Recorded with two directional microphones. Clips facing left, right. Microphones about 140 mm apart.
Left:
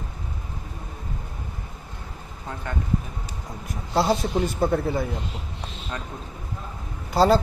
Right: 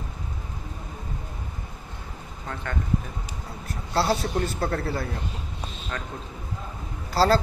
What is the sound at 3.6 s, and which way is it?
A man's voice, 15° left (ahead or behind).